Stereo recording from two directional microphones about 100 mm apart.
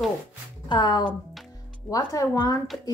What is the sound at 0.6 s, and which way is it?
Speech, 50° left (ahead or behind).